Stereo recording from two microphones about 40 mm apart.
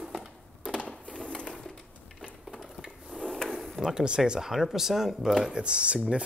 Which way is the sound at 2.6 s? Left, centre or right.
Centre.